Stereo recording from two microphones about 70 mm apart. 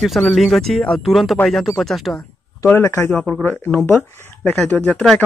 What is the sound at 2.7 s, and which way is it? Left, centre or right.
Speech, left.